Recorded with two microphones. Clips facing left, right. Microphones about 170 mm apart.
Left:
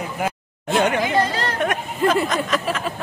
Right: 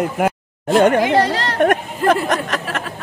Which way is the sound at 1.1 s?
75° right (ahead or behind).